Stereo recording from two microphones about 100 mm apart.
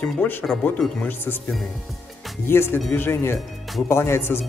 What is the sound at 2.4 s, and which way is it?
Speech, 25° left (ahead or behind).